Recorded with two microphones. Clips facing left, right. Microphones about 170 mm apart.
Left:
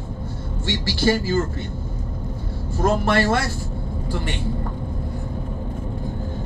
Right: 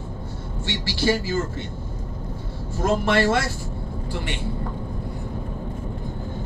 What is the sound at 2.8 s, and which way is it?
Speech, 45° left (ahead or behind).